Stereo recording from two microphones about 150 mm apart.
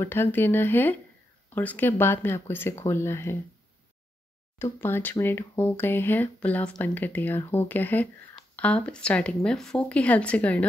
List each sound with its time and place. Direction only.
0.0 s speech: 15° left (ahead or behind)
4.6 s speech: 15° left (ahead or behind)